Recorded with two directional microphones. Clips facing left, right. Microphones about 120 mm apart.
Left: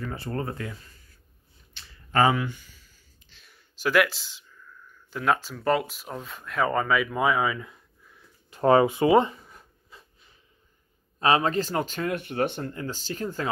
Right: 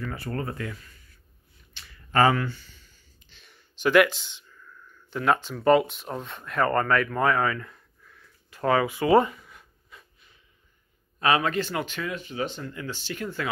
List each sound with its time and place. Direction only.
0.1 s speech: 25° left (ahead or behind)
2.1 s a sound: 15° left (ahead or behind); by 10.0 s 30° left (ahead or behind)
11.1 s speech: 30° left (ahead or behind)
12.2 s speech: 60° left (ahead or behind)
12.7 s speech: 40° left (ahead or behind)